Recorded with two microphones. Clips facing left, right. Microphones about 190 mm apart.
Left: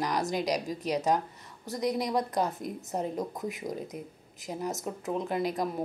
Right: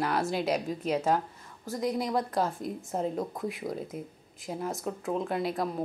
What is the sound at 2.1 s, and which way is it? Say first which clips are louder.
Speech: even; 20° left (ahead or behind).